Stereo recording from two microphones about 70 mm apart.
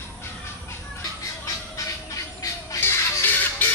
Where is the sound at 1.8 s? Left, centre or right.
Left.